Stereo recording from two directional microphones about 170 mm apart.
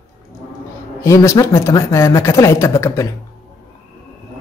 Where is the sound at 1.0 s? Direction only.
15° left (ahead or behind).